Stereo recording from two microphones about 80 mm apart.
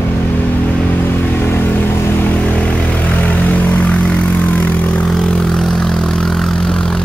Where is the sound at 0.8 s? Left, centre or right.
Left.